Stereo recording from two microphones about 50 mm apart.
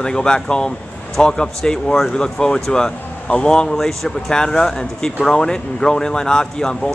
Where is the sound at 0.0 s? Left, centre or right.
Centre.